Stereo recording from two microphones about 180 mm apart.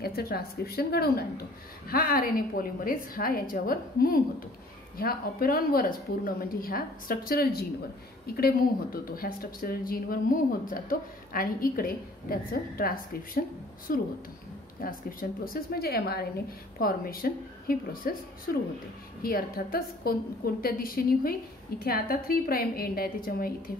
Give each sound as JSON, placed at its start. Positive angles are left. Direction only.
{"t": 0.0, "sound": "a woman's voice", "side_deg": 55}